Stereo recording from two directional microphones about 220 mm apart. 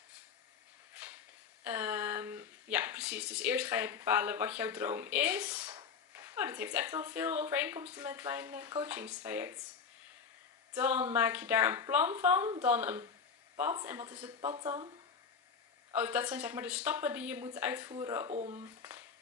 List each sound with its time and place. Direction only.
1.6 s speech: 10° right (ahead or behind)
10.7 s speech: 10° right (ahead or behind)
15.9 s speech: 5° right (ahead or behind)
18.3 s speech: 30° right (ahead or behind)
18.6 s a sound: 10° right (ahead or behind)